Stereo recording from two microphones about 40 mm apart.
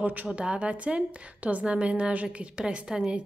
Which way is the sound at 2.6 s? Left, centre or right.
Centre.